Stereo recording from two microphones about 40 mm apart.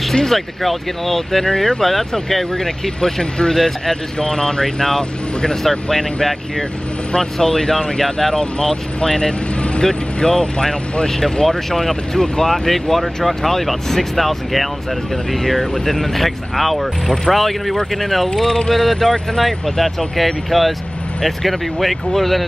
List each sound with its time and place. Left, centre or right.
0.1 s speech: centre
8.4 s speech: centre